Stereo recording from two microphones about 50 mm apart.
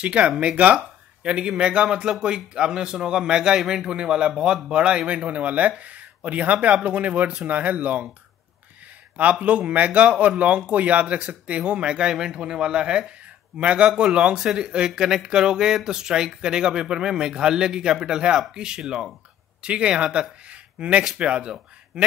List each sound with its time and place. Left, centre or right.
0.0 s speech: right
9.1 s speech: right